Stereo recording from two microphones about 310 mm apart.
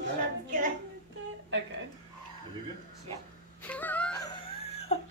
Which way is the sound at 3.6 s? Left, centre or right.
Centre.